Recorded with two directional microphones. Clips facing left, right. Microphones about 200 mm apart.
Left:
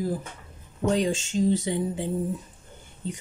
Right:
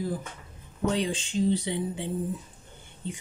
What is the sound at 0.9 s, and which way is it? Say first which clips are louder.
Speech: left 5 dB; 45° left (ahead or behind).